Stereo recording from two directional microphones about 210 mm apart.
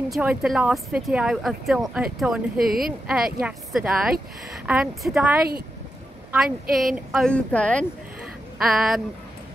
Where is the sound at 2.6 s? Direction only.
45° right (ahead or behind).